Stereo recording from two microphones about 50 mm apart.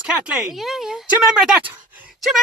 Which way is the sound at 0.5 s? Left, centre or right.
Centre.